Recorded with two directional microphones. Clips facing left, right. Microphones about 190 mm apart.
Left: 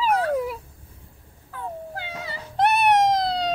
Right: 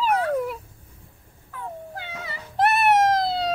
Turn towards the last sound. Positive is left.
turn(degrees=0)  # may be behind; listen again after turning